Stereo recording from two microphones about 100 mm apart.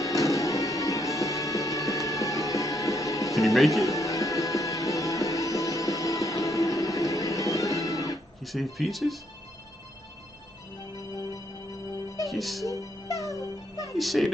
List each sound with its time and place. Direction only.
0.0 s music: 35° left (ahead or behind)
3.3 s speech: centre (ahead or behind)
3.8 s music: 35° left (ahead or behind)
8.4 s speech: centre (ahead or behind)
12.3 s speech: centre (ahead or behind)
12.6 s music: 35° left (ahead or behind)
13.9 s speech: centre (ahead or behind)